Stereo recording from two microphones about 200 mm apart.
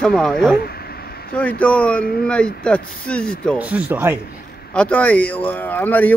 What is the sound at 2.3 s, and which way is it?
Speech, 5° left (ahead or behind).